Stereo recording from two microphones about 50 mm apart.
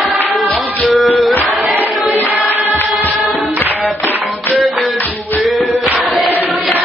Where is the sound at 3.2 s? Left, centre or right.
Centre.